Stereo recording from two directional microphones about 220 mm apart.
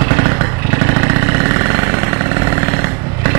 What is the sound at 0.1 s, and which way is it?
Vehicle, 15° right (ahead or behind).